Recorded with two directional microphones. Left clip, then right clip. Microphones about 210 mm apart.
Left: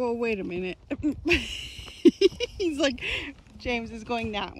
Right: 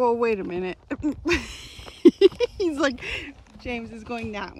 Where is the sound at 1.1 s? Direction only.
Centre (ahead or behind).